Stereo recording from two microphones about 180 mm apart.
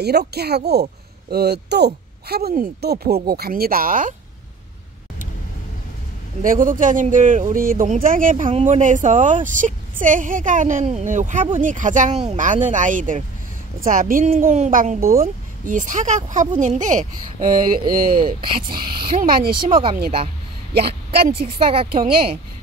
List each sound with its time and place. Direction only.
0.3 s speech: 65° right (ahead or behind)
6.4 s a woman's voice: 50° right (ahead or behind)
8.5 s a woman's voice: 35° right (ahead or behind); by 19.5 s 55° right (ahead or behind)
20.7 s a woman's voice: 60° right (ahead or behind)
21.5 s speech: 30° right (ahead or behind)